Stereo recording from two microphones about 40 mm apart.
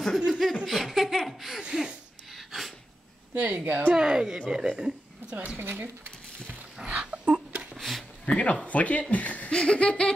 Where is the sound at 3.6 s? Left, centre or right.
Right.